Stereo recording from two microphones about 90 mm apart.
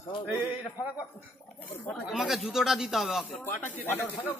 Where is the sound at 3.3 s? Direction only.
20° left (ahead or behind).